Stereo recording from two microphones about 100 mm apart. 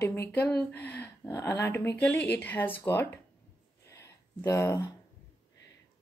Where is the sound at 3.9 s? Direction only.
25° left (ahead or behind).